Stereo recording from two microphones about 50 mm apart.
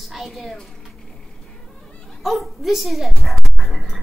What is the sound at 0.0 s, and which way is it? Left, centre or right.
Speech, centre.